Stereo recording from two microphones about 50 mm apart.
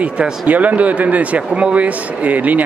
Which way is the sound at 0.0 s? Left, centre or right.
Right.